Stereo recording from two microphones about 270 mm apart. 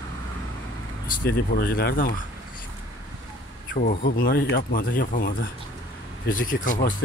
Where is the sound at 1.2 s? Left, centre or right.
Left.